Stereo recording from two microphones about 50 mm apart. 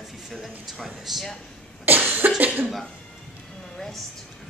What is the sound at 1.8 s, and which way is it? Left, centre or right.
Cough, right.